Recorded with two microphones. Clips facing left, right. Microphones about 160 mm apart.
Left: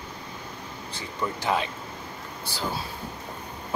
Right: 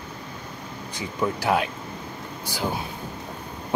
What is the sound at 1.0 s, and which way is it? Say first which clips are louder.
Speech: right 5 dB; 10° right (ahead or behind).